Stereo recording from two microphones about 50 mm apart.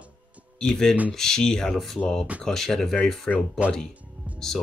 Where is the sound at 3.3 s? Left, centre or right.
Left.